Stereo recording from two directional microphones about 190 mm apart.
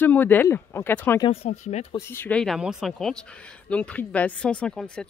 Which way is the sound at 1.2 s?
30° left (ahead or behind).